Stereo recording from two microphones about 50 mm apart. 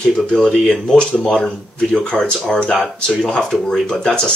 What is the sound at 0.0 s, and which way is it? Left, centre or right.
Speech, centre.